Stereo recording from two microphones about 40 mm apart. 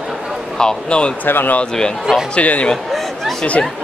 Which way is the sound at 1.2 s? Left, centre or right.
Left.